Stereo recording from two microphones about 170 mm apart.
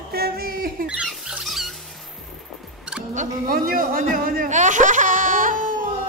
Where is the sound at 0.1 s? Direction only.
65° right (ahead or behind).